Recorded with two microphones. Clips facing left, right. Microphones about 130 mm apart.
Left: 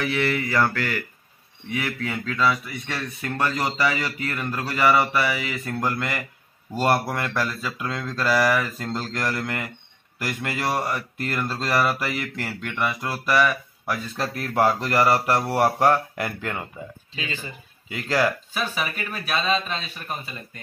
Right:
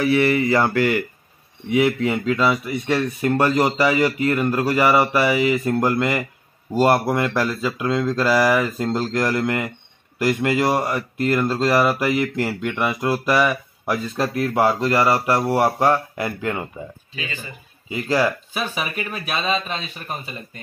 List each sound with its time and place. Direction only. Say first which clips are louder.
0.0 s speech: right 7 dB; 10° right (ahead or behind)
17.9 s speech: right 3 dB; 10° right (ahead or behind)